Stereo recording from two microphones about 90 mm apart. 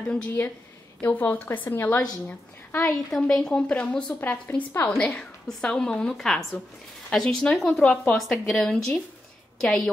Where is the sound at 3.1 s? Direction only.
5° left (ahead or behind); by 5.0 s 25° left (ahead or behind).